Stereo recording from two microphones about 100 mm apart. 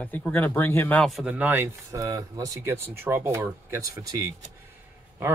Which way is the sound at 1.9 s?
35° right (ahead or behind).